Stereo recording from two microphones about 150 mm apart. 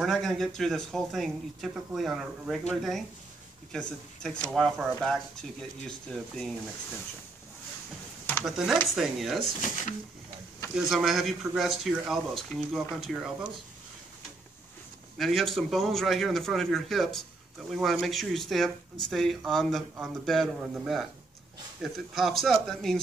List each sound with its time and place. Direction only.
0.0 s speech: centre (ahead or behind)
8.5 s speech: centre (ahead or behind)
9.4 s speech: 55° left (ahead or behind)
10.8 s speech: centre (ahead or behind)
15.1 s speech: centre (ahead or behind)